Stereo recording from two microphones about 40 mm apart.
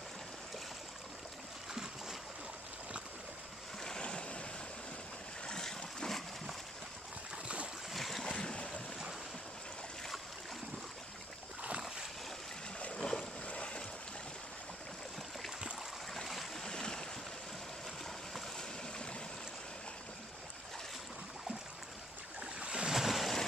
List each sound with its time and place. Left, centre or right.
1.7 s boat: centre
4.0 s vehicle: left
5.5 s a sound: centre
6.0 s splash: centre
7.4 s boat: right
7.9 s boat: centre
12.7 s boat: left
13.0 s boat: centre
13.5 s boat: left
16.3 s stream: centre
16.6 s boat: centre
22.6 s waves: right
22.8 s waves: centre